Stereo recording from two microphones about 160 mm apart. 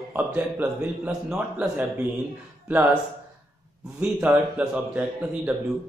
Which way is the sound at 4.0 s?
10° right (ahead or behind).